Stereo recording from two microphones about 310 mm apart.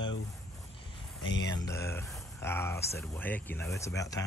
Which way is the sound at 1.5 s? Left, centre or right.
Centre.